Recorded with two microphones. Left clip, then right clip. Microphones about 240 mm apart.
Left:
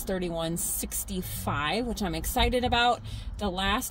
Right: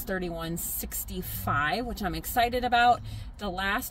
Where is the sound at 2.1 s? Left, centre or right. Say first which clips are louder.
Right 1 dB; centre.